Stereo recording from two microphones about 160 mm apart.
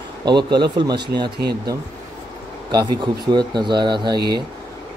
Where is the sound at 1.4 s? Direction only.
90° right.